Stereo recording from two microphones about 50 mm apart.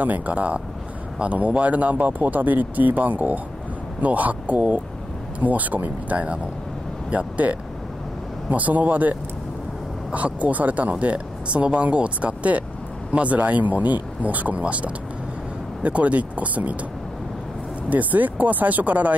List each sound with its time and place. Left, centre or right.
0.0 s speech: right
17.8 s speech: right